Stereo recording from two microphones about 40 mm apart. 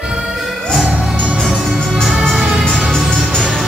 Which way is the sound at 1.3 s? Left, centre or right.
Centre.